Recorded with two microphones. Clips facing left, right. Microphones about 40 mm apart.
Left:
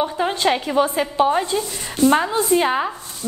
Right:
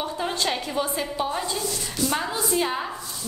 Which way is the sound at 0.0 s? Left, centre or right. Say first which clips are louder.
Left 7 dB; left.